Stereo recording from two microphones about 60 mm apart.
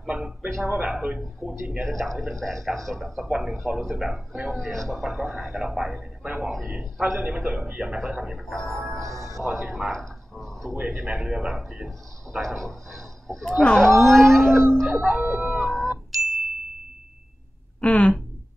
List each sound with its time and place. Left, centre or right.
0.0 s a man's voice: centre
1.4 s a man's voice: centre
8.5 s a man's voice: centre
8.9 s speech: right
9.4 s speech: centre
10.9 s a man's voice: centre
13.5 s a man's voice: centre
15.0 s a man's voice: centre
15.2 s howl: centre
17.7 s speech: centre